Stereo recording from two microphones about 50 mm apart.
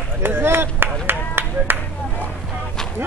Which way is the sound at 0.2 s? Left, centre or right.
Right.